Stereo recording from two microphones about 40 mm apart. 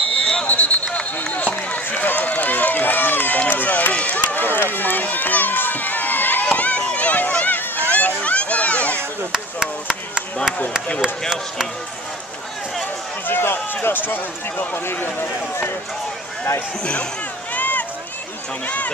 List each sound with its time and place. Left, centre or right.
0.2 s a sound: left
0.5 s a sound: left
1.3 s run: left
3.9 s run: left
4.3 s run: left
6.5 s run: left
7.3 s a sound: left
9.3 s chop: centre
13.3 s run: left
14.9 s speech: left
16.8 s speech: left
17.6 s run: left